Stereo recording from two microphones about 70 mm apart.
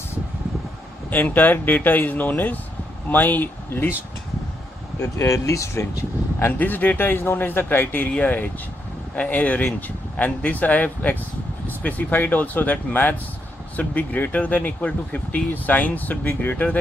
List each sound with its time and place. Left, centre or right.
1.1 s speech: left
5.0 s speech: left
6.6 s speech: left